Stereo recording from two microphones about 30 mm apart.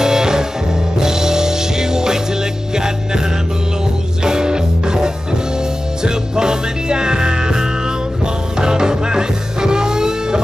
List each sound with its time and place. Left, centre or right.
0.0 s music: centre